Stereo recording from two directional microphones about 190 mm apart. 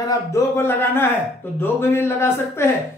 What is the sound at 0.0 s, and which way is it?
A man's voice, 15° left (ahead or behind).